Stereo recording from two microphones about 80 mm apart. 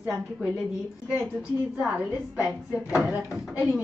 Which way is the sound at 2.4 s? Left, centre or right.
Centre.